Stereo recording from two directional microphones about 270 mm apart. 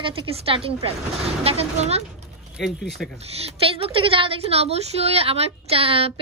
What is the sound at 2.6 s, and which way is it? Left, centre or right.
Speech, centre.